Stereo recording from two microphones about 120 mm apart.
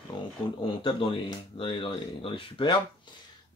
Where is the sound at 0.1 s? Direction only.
40° left (ahead or behind).